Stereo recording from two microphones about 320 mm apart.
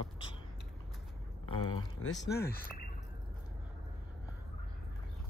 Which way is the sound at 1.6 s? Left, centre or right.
Centre.